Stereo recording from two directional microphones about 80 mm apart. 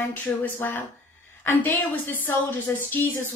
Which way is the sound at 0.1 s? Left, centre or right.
Left.